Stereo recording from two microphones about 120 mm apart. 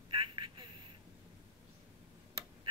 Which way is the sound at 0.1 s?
45° right (ahead or behind).